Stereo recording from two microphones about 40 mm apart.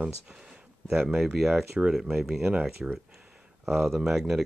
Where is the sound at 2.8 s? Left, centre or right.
Right.